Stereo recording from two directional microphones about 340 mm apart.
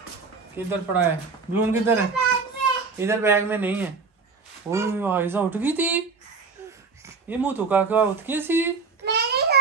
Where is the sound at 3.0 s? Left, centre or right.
Centre.